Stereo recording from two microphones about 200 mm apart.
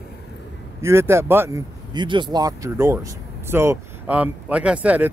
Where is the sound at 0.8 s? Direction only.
15° right (ahead or behind).